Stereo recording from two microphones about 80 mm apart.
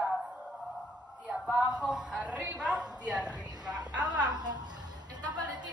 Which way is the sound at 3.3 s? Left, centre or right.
Right.